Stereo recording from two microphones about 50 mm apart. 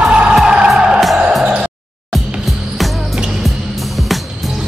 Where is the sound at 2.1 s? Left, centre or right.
Centre.